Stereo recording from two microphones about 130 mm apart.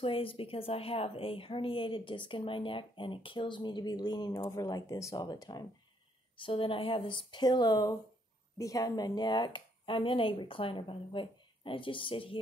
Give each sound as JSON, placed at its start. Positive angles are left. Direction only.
{"t": 0.0, "sound": "a woman's voice", "side_deg": 45}
{"t": 6.3, "sound": "a woman's voice", "side_deg": 40}